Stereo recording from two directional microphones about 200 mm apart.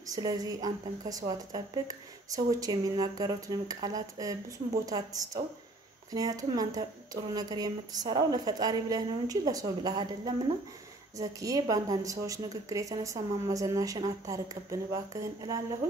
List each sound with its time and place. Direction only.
0.1 s a woman's voice: 20° right (ahead or behind)